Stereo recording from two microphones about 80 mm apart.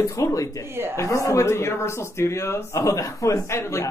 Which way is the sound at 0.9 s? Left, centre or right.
Left.